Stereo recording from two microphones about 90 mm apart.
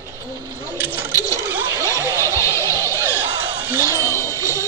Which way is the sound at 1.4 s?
20° right (ahead or behind).